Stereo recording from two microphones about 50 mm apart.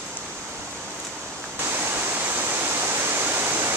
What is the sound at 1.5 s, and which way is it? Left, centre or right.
Waterfall, right.